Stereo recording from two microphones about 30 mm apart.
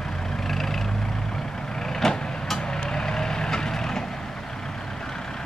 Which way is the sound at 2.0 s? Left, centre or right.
Centre.